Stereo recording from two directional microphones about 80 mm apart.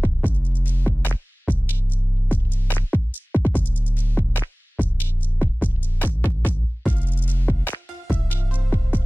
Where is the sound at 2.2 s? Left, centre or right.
Left.